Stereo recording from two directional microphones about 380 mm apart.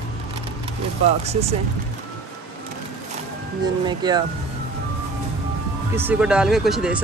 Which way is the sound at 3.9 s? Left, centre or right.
Centre.